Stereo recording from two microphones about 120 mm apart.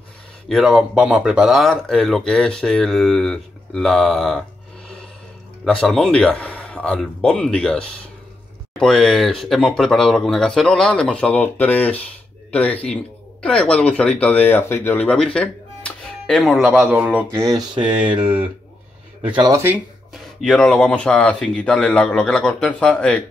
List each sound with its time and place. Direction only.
0.5 s speech: centre (ahead or behind)
12.4 s a sound: 10° left (ahead or behind)
12.8 s speech: 10° left (ahead or behind); by 17.6 s 20° right (ahead or behind)
17.6 s speech: 40° right (ahead or behind)
19.5 s speech: 20° right (ahead or behind)
20.2 s speech: centre (ahead or behind)